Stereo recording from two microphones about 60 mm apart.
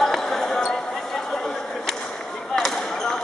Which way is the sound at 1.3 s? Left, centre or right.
Centre.